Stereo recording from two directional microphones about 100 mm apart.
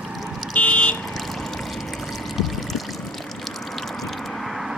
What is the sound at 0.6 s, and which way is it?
Car alarm, 15° left (ahead or behind).